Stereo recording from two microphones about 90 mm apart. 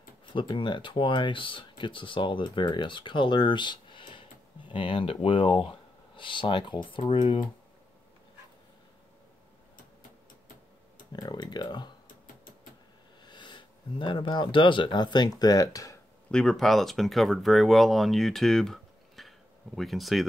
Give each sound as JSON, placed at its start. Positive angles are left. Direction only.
{"t": 0.3, "sound": "speech", "side_deg": 65}
{"t": 11.1, "sound": "speech", "side_deg": 50}
{"t": 13.2, "sound": "speech", "side_deg": 60}
{"t": 16.3, "sound": "speech", "side_deg": 5}